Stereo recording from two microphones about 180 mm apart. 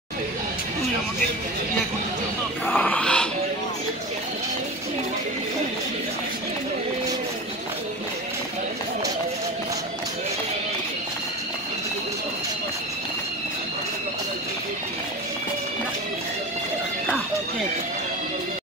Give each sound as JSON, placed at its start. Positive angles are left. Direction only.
{"t": 2.6, "sound": "music", "side_deg": 10}